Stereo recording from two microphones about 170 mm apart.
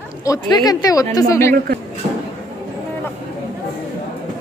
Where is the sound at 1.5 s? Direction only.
65° right (ahead or behind).